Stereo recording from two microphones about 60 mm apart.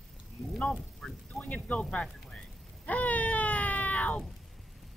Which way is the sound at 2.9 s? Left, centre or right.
Left.